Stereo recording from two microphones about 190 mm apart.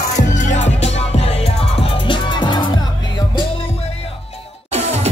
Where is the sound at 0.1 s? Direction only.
40° left (ahead or behind).